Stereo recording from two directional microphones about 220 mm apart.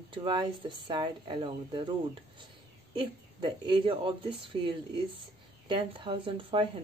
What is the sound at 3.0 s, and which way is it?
Speech, 20° right (ahead or behind).